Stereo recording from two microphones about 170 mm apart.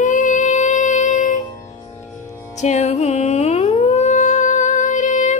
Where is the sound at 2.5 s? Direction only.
40° left (ahead or behind).